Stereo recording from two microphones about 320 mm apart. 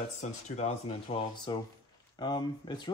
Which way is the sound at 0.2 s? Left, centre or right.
Centre.